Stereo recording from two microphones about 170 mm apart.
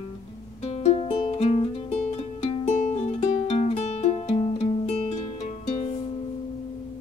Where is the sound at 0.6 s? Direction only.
35° left (ahead or behind).